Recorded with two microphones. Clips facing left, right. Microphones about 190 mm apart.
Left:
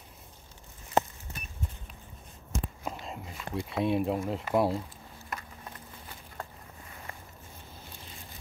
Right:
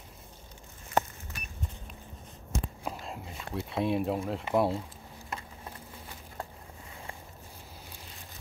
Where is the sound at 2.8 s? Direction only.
Centre (ahead or behind).